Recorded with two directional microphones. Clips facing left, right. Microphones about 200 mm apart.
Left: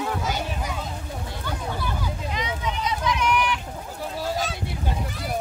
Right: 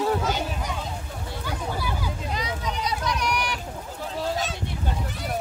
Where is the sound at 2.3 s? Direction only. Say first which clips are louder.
Left 1 dB; 35° right (ahead or behind).